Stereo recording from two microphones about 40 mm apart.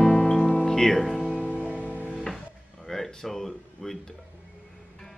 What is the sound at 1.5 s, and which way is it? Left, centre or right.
Music, right.